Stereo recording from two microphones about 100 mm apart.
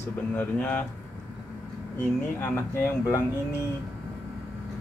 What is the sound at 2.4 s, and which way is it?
Speech, 20° left (ahead or behind).